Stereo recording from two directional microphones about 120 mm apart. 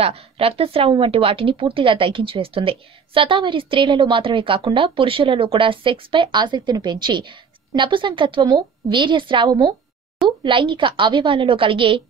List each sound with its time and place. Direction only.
0.0 s speech: 55° right (ahead or behind)